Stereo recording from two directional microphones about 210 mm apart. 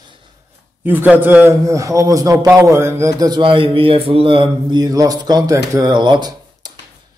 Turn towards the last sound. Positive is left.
turn(degrees=-20)  # may be behind; listen again after turning